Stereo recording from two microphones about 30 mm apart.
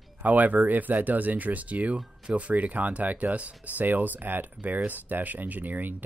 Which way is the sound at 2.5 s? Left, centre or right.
Right.